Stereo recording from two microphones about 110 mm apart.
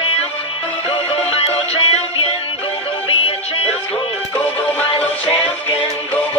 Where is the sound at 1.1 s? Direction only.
65° left (ahead or behind).